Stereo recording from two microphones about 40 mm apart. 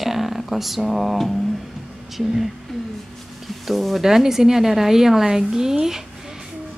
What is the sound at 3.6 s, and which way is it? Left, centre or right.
Speech, centre.